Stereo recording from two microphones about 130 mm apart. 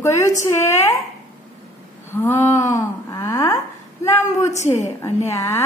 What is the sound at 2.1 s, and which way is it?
A woman's voice, 20° left (ahead or behind).